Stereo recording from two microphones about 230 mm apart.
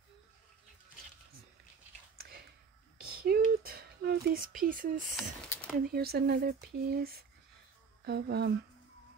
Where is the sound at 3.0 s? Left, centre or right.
Right.